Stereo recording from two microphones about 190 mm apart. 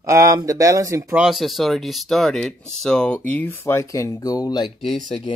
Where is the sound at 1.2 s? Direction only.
Centre (ahead or behind); by 4.7 s 20° left (ahead or behind).